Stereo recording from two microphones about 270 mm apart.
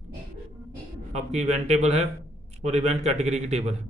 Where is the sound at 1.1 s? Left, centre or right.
Right.